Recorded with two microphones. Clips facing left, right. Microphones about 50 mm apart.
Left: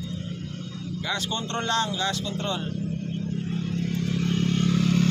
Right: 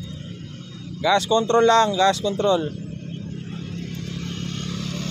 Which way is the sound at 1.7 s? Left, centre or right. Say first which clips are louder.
Right 9 dB; right.